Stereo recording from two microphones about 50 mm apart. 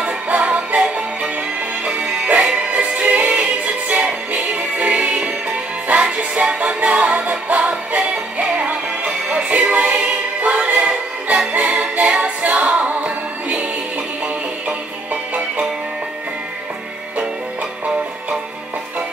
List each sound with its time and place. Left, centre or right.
0.0 s music: right
3.6 s music: right